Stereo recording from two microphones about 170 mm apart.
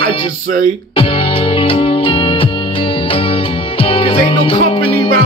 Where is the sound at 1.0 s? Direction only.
35° left (ahead or behind).